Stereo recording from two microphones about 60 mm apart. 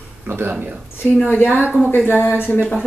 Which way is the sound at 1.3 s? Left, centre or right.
Left.